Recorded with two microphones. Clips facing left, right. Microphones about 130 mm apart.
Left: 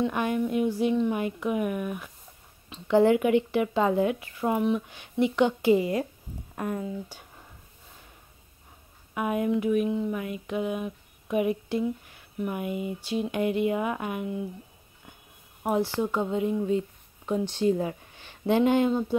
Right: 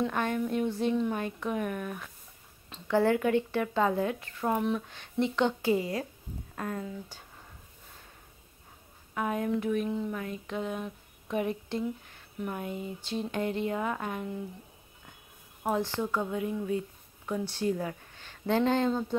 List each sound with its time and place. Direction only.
0.0 s speech: 10° left (ahead or behind)
9.1 s speech: 15° left (ahead or behind)
16.0 s speech: 20° left (ahead or behind)